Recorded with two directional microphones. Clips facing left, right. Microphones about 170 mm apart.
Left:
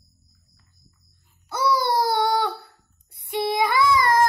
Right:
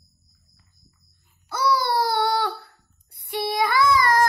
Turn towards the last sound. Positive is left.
turn(degrees=20)  # may be behind; listen again after turning